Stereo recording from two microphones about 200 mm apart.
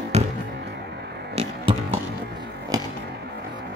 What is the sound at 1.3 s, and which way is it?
Music, 30° right (ahead or behind).